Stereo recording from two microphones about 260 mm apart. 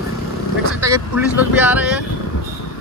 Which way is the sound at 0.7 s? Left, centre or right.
Centre.